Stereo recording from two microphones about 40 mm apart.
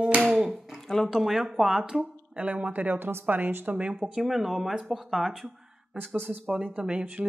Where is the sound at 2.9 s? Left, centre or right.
Right.